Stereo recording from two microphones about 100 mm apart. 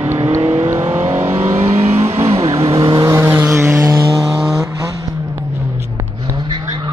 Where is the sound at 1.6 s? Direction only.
90° right; by 2.7 s 70° right (ahead or behind).